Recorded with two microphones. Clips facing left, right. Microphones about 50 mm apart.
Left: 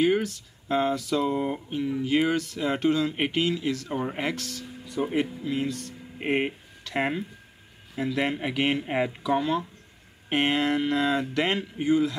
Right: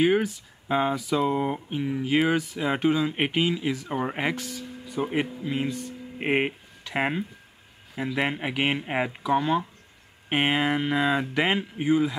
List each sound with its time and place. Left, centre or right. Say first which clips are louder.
0.0 s speech: right 1 dB; centre